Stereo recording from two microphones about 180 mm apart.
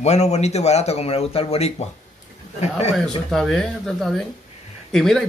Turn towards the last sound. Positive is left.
turn(degrees=0)  # may be behind; listen again after turning